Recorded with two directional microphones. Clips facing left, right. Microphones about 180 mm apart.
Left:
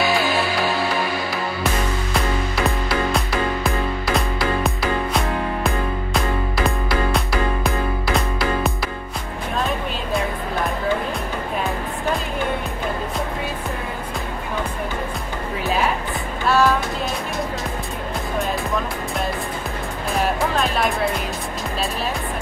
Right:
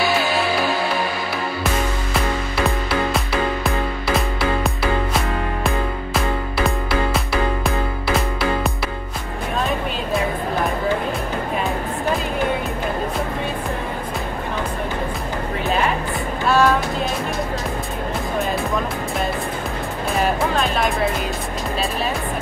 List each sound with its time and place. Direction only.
2.1 s music: centre (ahead or behind)
4.6 s music: centre (ahead or behind)
7.2 s music: centre (ahead or behind)
16.4 s music: centre (ahead or behind)
20.2 s music: centre (ahead or behind)